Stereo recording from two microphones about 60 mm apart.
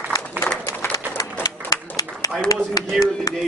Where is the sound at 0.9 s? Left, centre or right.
Left.